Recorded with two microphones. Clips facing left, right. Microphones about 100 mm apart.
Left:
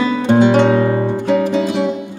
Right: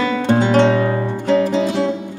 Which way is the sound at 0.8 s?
25° left (ahead or behind).